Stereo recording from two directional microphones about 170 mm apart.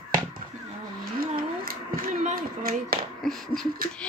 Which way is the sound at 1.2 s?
60° right (ahead or behind).